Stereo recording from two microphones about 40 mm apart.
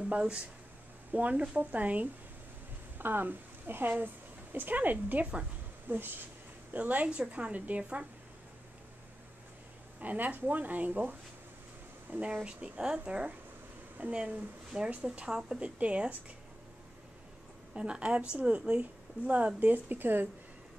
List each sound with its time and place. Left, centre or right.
0.1 s a woman's voice: right
1.6 s speech: right
3.0 s speech: right
4.0 s a sound: right
4.7 s speech: right
5.9 s speech: right
6.7 s a woman's voice: right
7.1 s a woman's voice: right
9.9 s a woman's voice: right
13.9 s a woman's voice: right; by 15.6 s centre
15.6 s speech: right
17.7 s a woman's voice: right